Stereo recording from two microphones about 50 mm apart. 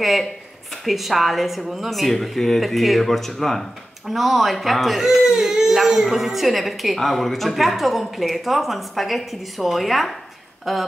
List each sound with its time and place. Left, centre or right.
0.8 s speech: centre